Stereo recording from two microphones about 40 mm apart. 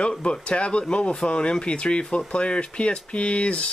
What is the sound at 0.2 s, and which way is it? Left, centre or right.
Speech, left.